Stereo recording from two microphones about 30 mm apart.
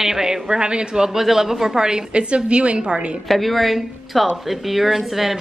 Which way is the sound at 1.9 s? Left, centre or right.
Right.